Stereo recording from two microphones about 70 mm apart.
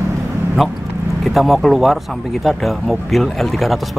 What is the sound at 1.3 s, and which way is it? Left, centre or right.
Speech, centre.